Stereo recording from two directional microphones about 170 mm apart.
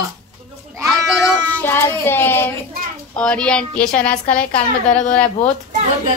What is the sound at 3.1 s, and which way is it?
Speech, 5° left (ahead or behind).